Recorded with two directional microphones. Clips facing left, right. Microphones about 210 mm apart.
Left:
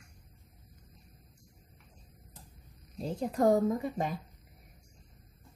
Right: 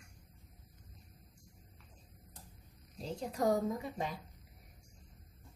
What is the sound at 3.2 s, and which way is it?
A woman's voice, 55° left (ahead or behind).